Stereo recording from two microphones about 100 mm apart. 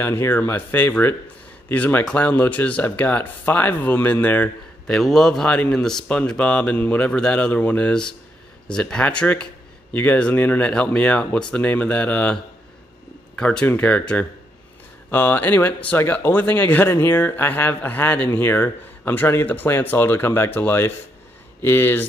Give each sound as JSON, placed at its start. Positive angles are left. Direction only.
{"t": 0.0, "sound": "speech", "side_deg": 20}
{"t": 4.8, "sound": "speech", "side_deg": 5}
{"t": 13.4, "sound": "speech", "side_deg": 10}